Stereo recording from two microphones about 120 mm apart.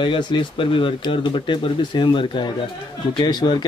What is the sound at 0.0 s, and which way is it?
Speech, 45° left (ahead or behind).